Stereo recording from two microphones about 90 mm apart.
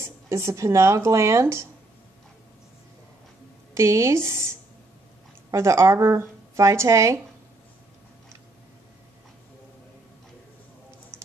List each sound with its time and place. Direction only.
0.0 s speech: 30° right (ahead or behind)
3.7 s speech: 35° right (ahead or behind)